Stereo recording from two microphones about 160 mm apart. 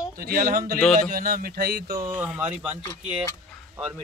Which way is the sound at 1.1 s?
65° right (ahead or behind).